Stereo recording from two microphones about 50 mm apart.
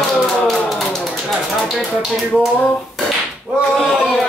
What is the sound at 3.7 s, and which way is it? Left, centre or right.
Speech, centre.